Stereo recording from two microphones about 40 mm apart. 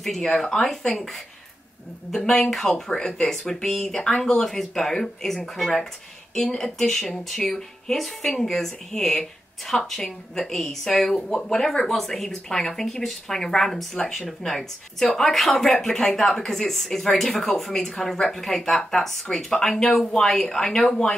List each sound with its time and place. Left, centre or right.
0.0 s a woman's voice: centre
13.9 s a woman's voice: centre
14.2 s a woman's voice: centre